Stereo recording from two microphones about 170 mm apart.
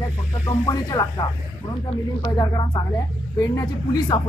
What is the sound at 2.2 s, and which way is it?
Speech, 25° left (ahead or behind).